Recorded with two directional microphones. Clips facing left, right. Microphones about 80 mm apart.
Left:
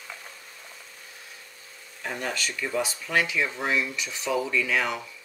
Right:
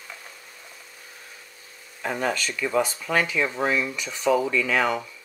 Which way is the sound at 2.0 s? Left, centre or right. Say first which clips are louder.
Right 5 dB; right.